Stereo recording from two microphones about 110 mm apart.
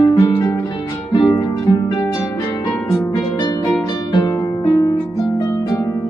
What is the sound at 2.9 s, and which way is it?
Harp, 30° left (ahead or behind).